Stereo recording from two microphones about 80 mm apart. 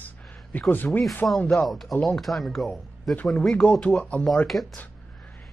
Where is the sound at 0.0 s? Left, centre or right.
Left.